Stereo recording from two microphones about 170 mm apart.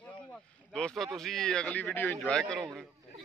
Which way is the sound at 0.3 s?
5° left (ahead or behind).